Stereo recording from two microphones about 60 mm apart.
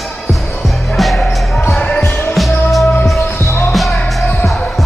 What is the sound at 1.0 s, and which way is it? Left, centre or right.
Music, centre.